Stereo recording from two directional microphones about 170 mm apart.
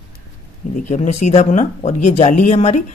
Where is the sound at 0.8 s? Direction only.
40° left (ahead or behind).